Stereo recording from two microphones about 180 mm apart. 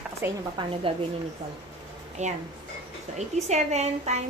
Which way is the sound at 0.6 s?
25° right (ahead or behind).